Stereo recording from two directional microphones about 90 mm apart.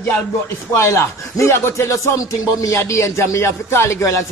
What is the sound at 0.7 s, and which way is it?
Speech, 30° left (ahead or behind).